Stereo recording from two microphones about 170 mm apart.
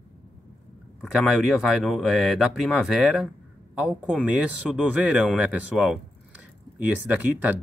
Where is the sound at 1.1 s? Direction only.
Centre (ahead or behind).